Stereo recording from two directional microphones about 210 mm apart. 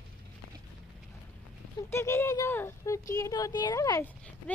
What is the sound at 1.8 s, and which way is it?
A woman's voice, 10° left (ahead or behind).